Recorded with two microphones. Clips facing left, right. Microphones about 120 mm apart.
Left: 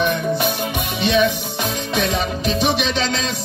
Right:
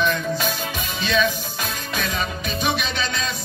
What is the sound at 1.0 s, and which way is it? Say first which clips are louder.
Music: left 4 dB; 65° left (ahead or behind).